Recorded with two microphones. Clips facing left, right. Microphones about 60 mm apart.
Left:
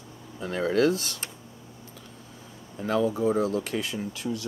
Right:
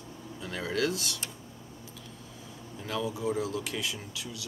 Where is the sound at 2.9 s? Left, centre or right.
Left.